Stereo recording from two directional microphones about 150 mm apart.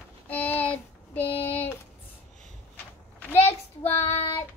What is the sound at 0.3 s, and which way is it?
Child singing, 10° left (ahead or behind).